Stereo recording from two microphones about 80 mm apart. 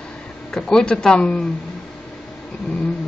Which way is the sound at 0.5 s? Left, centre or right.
Centre.